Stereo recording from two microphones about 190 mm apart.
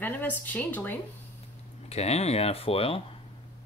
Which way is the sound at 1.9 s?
35° left (ahead or behind).